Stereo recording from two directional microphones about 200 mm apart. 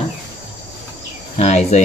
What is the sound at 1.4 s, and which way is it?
Speech, 35° left (ahead or behind).